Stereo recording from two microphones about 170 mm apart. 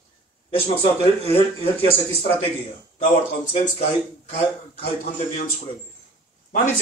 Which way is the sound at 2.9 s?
45° left (ahead or behind).